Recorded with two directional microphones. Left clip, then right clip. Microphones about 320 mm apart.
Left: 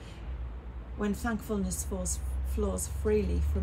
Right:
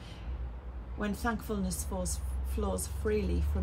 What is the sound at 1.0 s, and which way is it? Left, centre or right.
A woman's voice, centre.